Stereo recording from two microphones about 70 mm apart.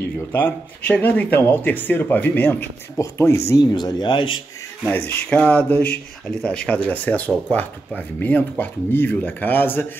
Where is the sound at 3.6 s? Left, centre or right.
Left.